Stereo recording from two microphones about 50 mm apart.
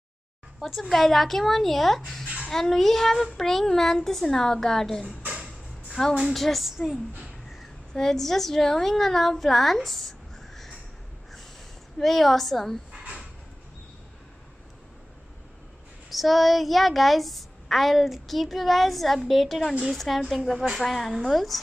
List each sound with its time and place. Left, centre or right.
0.6 s a woman's voice: centre
5.0 s a sound: right
5.9 s music: centre
6.1 s a woman's voice: centre
12.0 s a woman's voice: centre
16.1 s a woman's voice: centre